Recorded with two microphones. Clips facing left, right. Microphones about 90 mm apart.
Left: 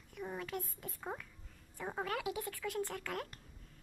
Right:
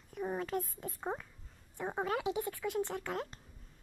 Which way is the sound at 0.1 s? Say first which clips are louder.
Right 6 dB; 35° right (ahead or behind).